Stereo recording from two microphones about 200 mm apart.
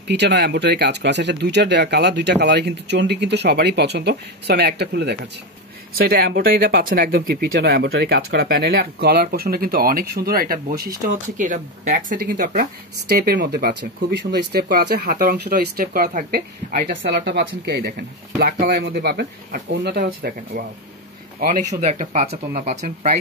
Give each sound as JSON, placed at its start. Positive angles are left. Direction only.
{"t": 0.1, "sound": "speech", "side_deg": -60}
{"t": 21.4, "sound": "speech", "side_deg": -40}